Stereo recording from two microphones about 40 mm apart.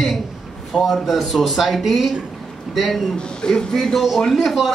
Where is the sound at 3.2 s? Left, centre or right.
Left.